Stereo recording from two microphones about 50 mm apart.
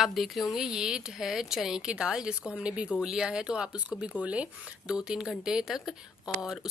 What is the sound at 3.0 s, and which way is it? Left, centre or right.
Speech, centre.